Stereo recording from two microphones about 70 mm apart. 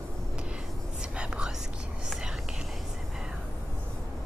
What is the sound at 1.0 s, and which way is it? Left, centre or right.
Whispering, centre.